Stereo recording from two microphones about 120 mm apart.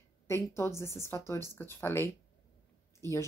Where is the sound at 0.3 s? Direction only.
20° left (ahead or behind).